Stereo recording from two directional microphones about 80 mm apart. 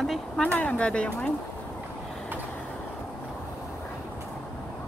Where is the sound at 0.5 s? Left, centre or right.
Centre.